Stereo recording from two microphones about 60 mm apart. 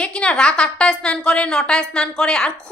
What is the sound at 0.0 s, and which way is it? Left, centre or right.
A woman's voice, centre.